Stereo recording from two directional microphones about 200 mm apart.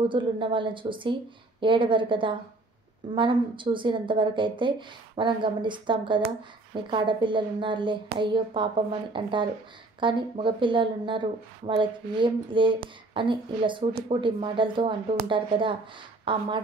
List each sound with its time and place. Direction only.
0.1 s a woman's voice: 25° right (ahead or behind)